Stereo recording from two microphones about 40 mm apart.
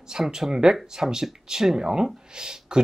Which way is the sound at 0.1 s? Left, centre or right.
Centre.